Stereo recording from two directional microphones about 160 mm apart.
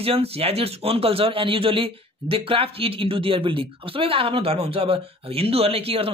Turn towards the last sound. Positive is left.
turn(degrees=-40)  # may be behind; listen again after turning